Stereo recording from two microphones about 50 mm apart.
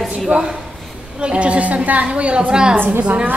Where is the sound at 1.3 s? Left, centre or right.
Right.